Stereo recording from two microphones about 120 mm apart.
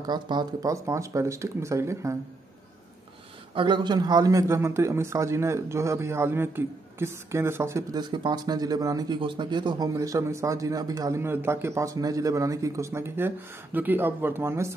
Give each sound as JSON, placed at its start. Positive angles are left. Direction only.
{"t": 0.0, "sound": "a man's voice", "side_deg": -35}
{"t": 3.5, "sound": "a man's voice", "side_deg": -40}
{"t": 8.0, "sound": "speech", "side_deg": -40}
{"t": 9.9, "sound": "a man's voice", "side_deg": -25}